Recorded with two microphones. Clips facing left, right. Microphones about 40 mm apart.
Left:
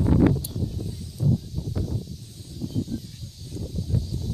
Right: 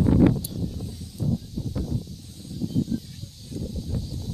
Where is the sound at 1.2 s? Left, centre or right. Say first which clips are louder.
Left 2 dB; right.